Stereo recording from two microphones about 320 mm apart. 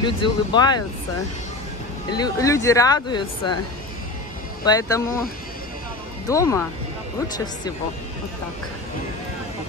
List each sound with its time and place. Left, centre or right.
0.0 s speech: centre
2.1 s speech: centre
4.6 s speech: centre
6.2 s speech: centre